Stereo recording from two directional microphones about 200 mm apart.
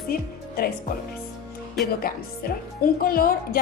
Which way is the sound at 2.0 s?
50° left (ahead or behind).